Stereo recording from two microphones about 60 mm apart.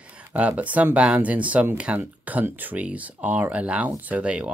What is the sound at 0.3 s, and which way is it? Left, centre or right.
Speech, right.